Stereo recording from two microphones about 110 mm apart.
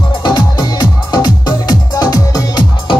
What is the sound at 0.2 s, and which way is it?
Music, 40° left (ahead or behind).